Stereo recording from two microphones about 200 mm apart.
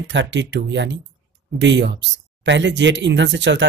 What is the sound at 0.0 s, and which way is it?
Speech, 60° right (ahead or behind).